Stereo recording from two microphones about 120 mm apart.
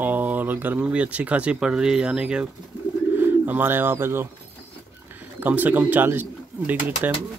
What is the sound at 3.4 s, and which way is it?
Speech, 15° right (ahead or behind).